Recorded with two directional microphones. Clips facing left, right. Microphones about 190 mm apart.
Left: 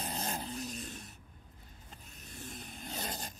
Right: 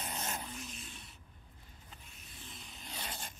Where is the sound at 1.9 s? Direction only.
40° left (ahead or behind).